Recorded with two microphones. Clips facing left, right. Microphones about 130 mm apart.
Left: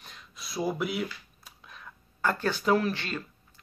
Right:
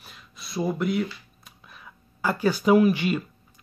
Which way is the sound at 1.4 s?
5° right (ahead or behind).